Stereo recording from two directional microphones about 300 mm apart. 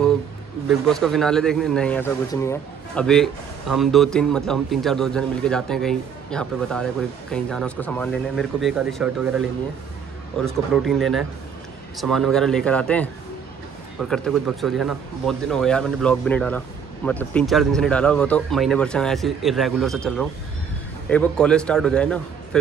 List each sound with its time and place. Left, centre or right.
0.7 s a man's voice: centre
10.4 s a man's voice: centre